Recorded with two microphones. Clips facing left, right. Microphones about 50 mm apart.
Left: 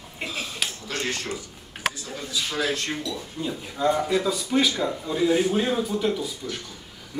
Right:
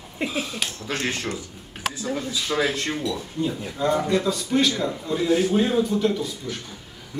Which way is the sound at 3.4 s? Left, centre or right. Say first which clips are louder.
Right 1 dB; centre.